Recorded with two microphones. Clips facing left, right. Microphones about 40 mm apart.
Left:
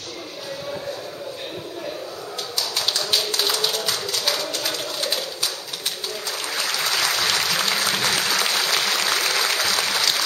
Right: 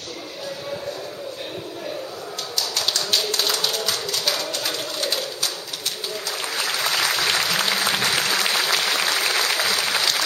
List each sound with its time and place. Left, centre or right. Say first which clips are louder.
2.7 s tap: even; centre
6.5 s applause: even; centre